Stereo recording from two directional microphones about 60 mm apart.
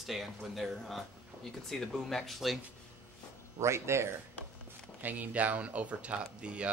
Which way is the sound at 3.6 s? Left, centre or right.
Right.